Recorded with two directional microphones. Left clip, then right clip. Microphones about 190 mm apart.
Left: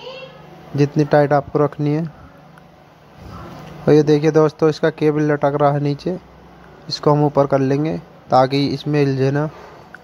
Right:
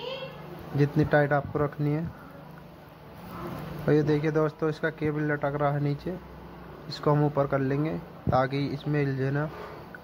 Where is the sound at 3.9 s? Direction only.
45° left (ahead or behind).